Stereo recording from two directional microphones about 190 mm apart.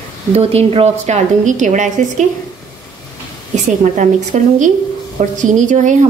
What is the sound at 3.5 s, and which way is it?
A woman's voice, 40° right (ahead or behind).